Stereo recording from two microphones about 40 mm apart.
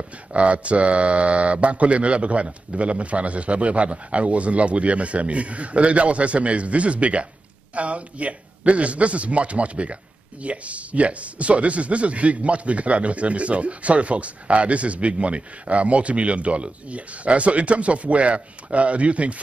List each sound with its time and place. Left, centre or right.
0.3 s a man's voice: right